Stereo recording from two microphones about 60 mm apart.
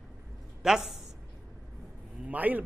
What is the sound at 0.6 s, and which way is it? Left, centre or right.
Speech, centre.